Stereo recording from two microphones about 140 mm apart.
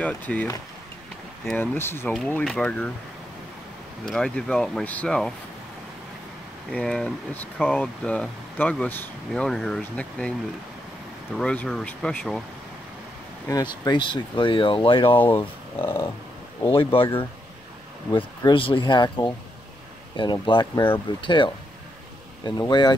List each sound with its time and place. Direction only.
0.0 s speech: 10° left (ahead or behind)
1.6 s speech: 15° left (ahead or behind)
4.0 s speech: 5° left (ahead or behind)
6.7 s speech: 5° left (ahead or behind)
9.3 s speech: 5° left (ahead or behind)
11.3 s speech: 5° left (ahead or behind)
13.5 s speech: 30° left (ahead or behind)
15.1 s speech: 15° left (ahead or behind)
16.7 s speech: 40° left (ahead or behind)
20.4 s speech: 35° left (ahead or behind)